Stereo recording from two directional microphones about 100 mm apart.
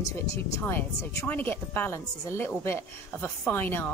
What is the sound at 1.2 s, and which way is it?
A woman's voice, 20° left (ahead or behind).